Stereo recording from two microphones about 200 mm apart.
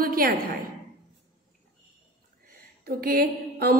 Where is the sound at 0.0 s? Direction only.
45° right (ahead or behind).